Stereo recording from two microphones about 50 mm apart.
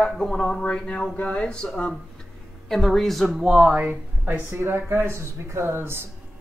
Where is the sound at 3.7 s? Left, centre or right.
Right.